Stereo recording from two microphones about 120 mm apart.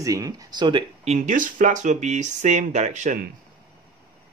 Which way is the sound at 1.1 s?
90° right.